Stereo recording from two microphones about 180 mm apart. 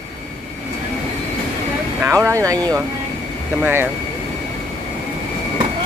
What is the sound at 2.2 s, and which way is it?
Speech, 15° right (ahead or behind).